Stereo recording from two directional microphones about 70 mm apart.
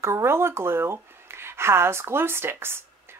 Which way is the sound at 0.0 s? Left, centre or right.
Right.